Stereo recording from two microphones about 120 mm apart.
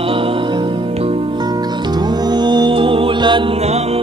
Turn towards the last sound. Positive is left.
turn(degrees=-45)  # may be behind; listen again after turning